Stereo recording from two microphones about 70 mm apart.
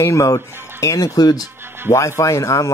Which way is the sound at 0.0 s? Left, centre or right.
Left.